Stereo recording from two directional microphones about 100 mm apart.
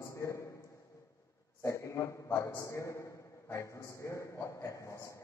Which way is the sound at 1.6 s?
30° left (ahead or behind).